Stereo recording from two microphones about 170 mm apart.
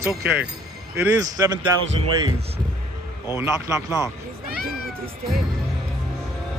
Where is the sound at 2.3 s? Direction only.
35° right (ahead or behind).